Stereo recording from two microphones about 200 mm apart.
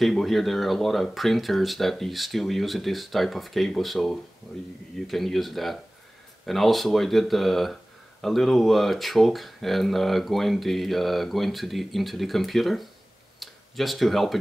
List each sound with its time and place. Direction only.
0.0 s speech: centre (ahead or behind)